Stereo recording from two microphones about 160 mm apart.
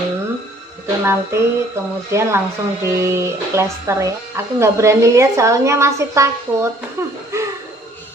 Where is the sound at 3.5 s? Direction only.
15° right (ahead or behind).